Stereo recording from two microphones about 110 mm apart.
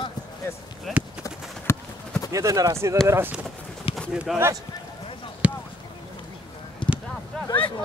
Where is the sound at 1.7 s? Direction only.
25° left (ahead or behind).